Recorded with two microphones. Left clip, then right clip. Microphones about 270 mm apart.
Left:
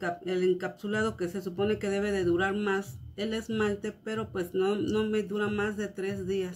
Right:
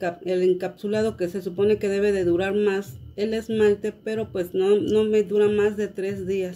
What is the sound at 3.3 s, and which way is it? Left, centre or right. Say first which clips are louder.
Speech: right 10 dB; centre.